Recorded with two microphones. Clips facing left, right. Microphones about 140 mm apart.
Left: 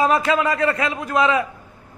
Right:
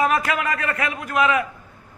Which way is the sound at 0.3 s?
30° left (ahead or behind).